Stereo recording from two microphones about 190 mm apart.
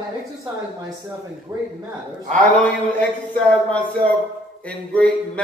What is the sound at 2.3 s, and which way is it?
A man's voice, 5° left (ahead or behind).